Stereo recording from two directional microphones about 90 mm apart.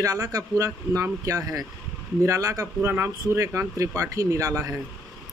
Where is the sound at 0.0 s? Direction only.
40° right (ahead or behind).